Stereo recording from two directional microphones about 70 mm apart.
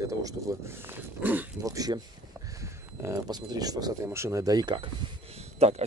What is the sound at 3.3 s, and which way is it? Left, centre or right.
Speech, right.